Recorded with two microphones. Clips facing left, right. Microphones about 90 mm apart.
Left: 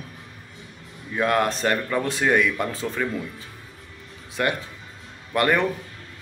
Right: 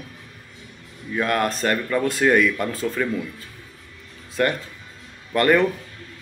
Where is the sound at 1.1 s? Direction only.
15° left (ahead or behind).